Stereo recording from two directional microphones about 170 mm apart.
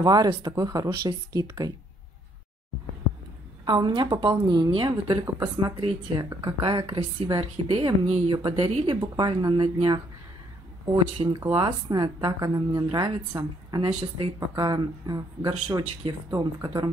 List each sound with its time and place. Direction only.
0.0 s a woman's voice: 25° right (ahead or behind)
3.6 s a woman's voice: 25° right (ahead or behind)
11.1 s a woman's voice: 30° right (ahead or behind)